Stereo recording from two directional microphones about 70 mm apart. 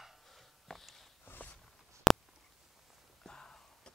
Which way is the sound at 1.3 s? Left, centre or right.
Left.